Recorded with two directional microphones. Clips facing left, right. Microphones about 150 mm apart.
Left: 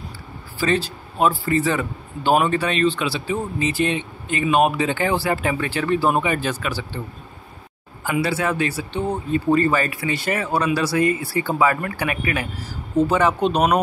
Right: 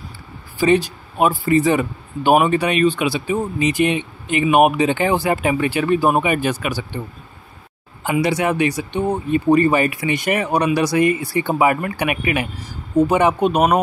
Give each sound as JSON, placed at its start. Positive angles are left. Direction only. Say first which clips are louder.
{"t": 0.6, "sound": "speech", "louder": "right 6 dB", "side_deg": -15}
{"t": 8.0, "sound": "speech", "louder": "right 3 dB", "side_deg": -20}